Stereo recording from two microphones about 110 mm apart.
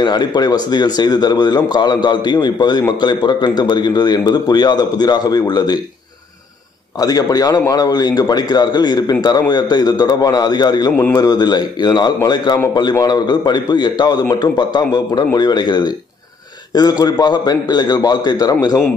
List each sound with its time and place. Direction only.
0.0 s a man's voice: 40° left (ahead or behind)
7.0 s a man's voice: 35° left (ahead or behind)
17.0 s a man's voice: 40° left (ahead or behind)